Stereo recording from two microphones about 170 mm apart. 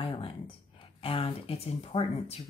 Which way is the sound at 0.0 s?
35° left (ahead or behind).